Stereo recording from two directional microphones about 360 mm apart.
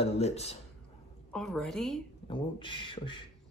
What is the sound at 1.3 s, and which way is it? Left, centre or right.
Speech, centre.